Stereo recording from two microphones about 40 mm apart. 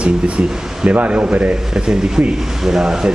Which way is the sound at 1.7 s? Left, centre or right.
Centre.